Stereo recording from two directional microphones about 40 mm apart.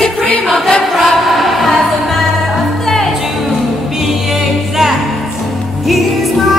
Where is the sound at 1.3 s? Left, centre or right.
Centre.